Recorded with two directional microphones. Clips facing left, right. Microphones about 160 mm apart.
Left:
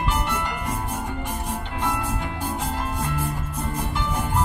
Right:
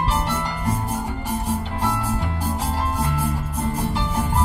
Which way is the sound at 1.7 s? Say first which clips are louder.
Right 2 dB; 35° right (ahead or behind).